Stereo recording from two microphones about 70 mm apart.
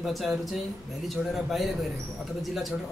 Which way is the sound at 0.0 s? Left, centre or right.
Centre.